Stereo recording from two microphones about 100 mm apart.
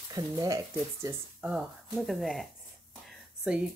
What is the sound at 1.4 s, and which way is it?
Speech, 10° right (ahead or behind).